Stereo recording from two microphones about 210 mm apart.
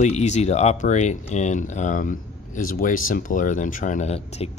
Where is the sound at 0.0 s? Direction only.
35° left (ahead or behind).